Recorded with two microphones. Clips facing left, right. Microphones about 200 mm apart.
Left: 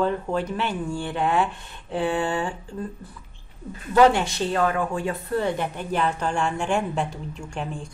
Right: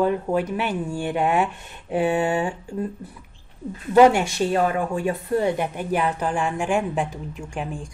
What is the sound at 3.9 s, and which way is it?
Speech, 15° right (ahead or behind).